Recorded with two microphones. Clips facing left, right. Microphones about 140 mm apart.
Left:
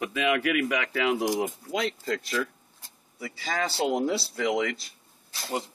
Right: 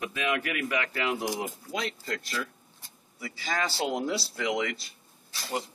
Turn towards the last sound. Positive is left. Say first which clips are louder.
# left 1 dB
turn(degrees=0)  # may be behind; listen again after turning